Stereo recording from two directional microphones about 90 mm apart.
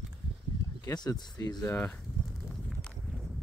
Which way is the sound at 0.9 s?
50° left (ahead or behind).